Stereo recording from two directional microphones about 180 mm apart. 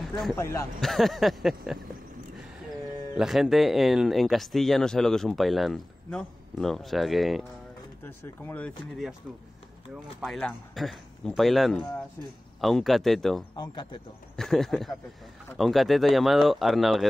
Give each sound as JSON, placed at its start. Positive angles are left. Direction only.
{"t": 0.4, "sound": "speech", "side_deg": 15}
{"t": 0.7, "sound": "speech", "side_deg": 0}
{"t": 3.2, "sound": "speech", "side_deg": 0}
{"t": 8.0, "sound": "speech", "side_deg": 15}
{"t": 10.2, "sound": "speech", "side_deg": 5}